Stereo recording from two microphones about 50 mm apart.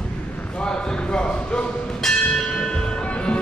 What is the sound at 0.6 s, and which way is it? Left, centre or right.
Bell, centre.